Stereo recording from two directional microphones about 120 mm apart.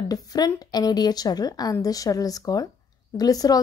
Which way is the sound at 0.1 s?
30° left (ahead or behind).